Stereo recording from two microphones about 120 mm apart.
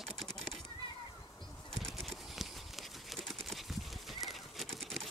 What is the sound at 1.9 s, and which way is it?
Clip-clop, centre (ahead or behind).